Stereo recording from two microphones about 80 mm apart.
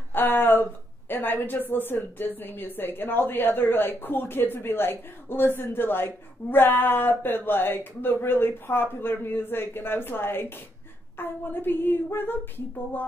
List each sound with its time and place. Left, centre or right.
0.1 s a woman's voice: left